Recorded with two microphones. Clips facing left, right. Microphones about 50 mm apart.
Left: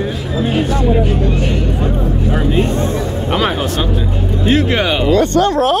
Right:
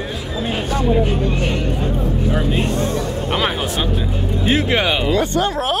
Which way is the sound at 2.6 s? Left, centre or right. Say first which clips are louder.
Left 4 dB; left.